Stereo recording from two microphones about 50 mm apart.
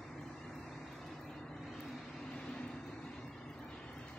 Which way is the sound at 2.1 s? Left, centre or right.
Centre.